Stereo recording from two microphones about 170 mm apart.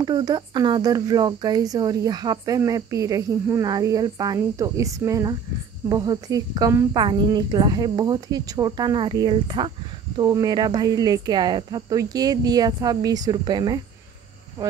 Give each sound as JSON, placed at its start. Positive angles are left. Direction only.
{"t": 0.0, "sound": "speech", "side_deg": -25}